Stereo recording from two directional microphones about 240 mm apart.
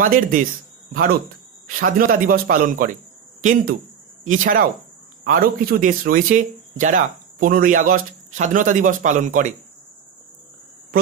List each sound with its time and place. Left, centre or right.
0.0 s speech: right
4.2 s speech: right